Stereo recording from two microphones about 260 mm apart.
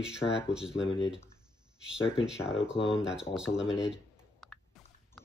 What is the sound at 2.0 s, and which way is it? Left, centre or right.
Speech, centre.